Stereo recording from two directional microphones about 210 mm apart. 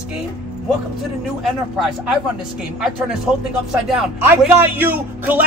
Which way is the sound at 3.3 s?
Centre (ahead or behind).